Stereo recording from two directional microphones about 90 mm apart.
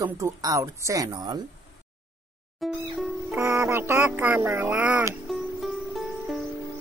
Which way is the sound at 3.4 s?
30° right (ahead or behind).